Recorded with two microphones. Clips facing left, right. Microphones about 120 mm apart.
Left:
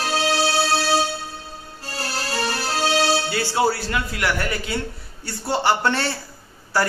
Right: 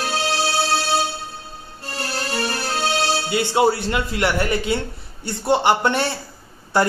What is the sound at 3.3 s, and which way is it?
Speech, 20° right (ahead or behind).